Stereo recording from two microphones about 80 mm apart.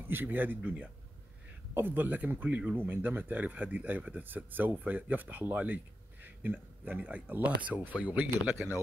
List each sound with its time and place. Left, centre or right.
0.1 s speech: right